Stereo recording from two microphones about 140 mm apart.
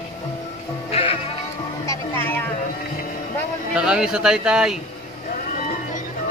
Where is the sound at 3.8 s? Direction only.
5° right (ahead or behind).